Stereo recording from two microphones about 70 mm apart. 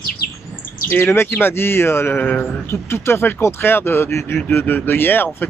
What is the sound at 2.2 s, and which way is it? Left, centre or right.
Speech, left.